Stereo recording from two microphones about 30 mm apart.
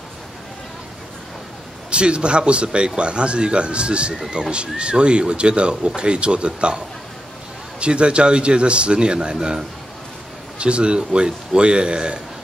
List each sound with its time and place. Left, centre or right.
1.9 s speech: right
7.8 s speech: right